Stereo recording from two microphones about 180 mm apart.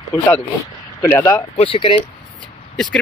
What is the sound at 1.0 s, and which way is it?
Speech, 15° left (ahead or behind).